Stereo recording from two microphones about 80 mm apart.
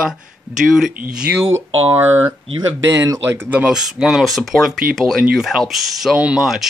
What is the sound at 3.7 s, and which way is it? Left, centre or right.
Speech, centre.